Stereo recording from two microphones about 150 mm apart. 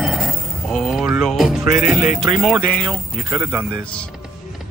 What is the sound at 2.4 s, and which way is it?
Speech, centre (ahead or behind).